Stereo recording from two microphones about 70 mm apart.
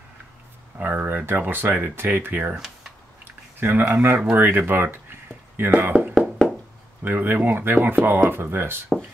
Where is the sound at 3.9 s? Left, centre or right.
Right.